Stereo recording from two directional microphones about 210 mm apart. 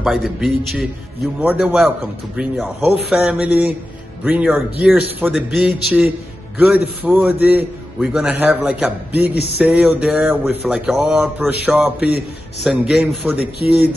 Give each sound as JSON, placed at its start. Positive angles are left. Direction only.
{"t": 0.0, "sound": "a man's voice", "side_deg": 0}
{"t": 9.3, "sound": "speech", "side_deg": 50}
{"t": 9.6, "sound": "a man's voice", "side_deg": -5}